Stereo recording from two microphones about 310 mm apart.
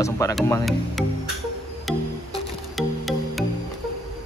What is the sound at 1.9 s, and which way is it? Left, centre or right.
Music, centre.